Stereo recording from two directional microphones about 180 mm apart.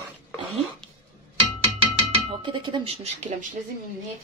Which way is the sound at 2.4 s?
25° right (ahead or behind).